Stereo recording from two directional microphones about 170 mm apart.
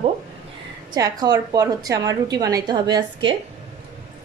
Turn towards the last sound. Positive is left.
turn(degrees=-25)  # may be behind; listen again after turning